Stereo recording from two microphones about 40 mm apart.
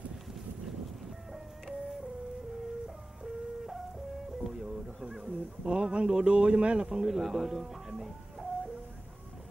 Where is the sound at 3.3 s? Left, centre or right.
Centre.